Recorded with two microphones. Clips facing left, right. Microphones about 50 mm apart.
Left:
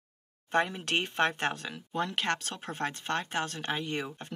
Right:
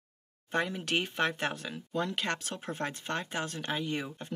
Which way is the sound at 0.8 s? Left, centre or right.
Left.